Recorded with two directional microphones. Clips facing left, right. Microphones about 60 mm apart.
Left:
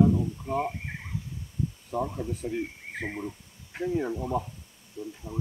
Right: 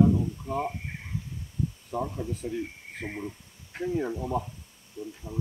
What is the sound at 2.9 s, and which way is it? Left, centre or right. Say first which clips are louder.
Speech: left 2 dB; centre.